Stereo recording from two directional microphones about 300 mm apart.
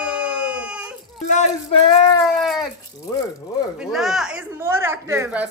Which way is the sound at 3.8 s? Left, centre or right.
Centre.